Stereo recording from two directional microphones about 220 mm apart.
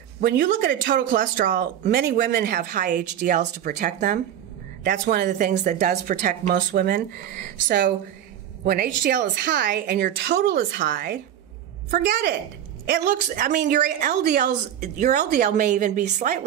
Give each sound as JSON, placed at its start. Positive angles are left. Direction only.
{"t": 0.2, "sound": "a woman's voice", "side_deg": -40}